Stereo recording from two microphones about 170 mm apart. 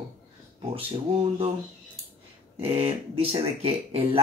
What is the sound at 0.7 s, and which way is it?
Speech, 35° right (ahead or behind).